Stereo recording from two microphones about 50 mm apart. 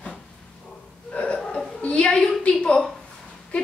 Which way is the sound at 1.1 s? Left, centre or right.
Left.